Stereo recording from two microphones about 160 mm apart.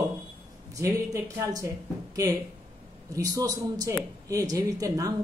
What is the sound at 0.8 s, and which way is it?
Speech, 20° right (ahead or behind).